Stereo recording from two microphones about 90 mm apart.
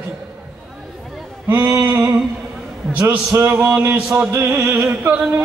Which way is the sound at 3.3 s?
25° right (ahead or behind).